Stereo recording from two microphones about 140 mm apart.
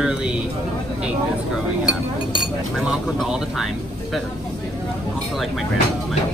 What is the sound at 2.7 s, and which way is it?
Speech, 5° right (ahead or behind).